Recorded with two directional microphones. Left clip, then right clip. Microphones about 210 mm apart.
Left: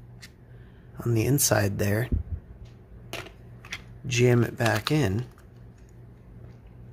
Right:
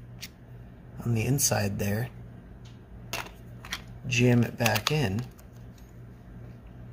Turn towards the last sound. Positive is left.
turn(degrees=45)  # may be behind; listen again after turning